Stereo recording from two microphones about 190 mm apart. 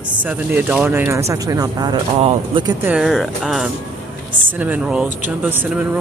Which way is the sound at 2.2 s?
30° right (ahead or behind).